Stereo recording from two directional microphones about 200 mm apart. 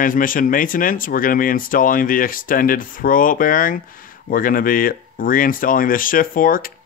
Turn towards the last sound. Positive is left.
turn(degrees=45)  # may be behind; listen again after turning